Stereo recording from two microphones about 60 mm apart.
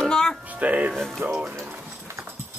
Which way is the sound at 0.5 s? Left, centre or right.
Right.